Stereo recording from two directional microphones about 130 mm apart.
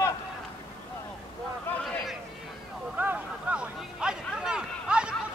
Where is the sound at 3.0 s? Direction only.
15° right (ahead or behind).